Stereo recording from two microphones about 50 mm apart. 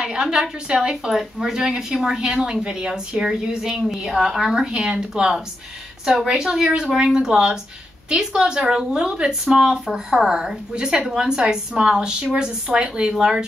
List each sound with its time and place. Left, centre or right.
0.0 s a woman's voice: centre